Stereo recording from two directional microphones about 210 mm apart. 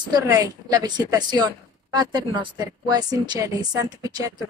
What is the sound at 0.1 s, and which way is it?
Speech, 15° right (ahead or behind).